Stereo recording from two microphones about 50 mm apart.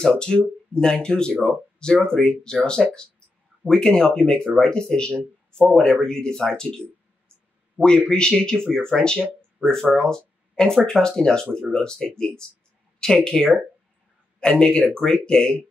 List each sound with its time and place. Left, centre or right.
0.1 s speech: centre
7.8 s speech: right
8.1 s speech: centre